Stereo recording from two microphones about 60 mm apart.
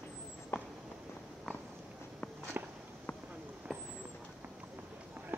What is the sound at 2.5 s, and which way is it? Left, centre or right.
Walk, right.